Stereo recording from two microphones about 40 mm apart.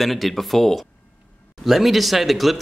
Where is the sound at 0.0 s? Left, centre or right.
Centre.